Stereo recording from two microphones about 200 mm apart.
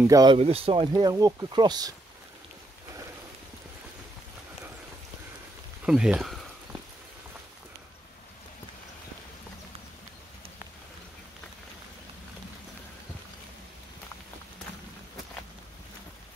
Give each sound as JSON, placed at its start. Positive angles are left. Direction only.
{"t": 0.0, "sound": "speech", "side_deg": -20}
{"t": 0.4, "sound": "speech", "side_deg": -30}
{"t": 5.9, "sound": "speech", "side_deg": -5}